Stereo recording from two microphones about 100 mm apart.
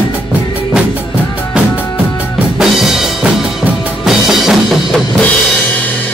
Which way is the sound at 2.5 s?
5° right (ahead or behind).